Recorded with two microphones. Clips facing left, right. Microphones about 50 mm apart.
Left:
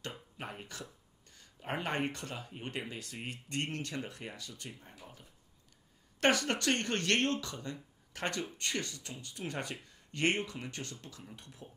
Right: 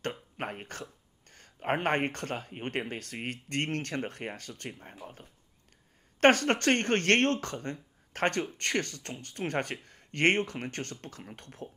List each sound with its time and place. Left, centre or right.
0.4 s speech: right